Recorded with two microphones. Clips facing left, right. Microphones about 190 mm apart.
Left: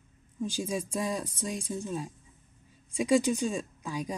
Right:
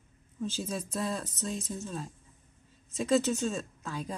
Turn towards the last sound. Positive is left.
turn(degrees=15)  # may be behind; listen again after turning